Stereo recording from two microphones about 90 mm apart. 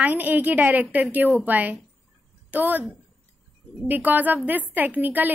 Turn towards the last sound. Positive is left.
turn(degrees=-20)  # may be behind; listen again after turning